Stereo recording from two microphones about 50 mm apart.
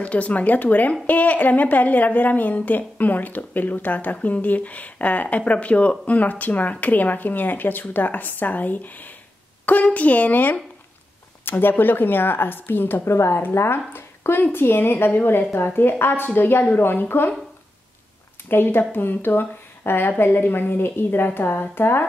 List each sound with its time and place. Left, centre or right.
0.0 s a woman's voice: left
13.1 s a woman's voice: left
13.4 s speech: left
13.9 s a sound: left
14.5 s speech: left
18.5 s speech: left